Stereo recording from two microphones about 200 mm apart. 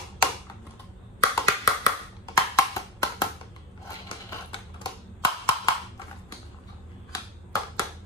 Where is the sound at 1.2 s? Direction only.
15° left (ahead or behind).